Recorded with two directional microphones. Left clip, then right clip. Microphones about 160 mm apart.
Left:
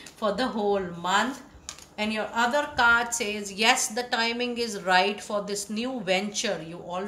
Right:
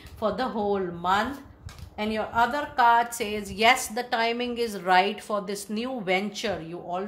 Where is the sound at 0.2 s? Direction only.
40° right (ahead or behind).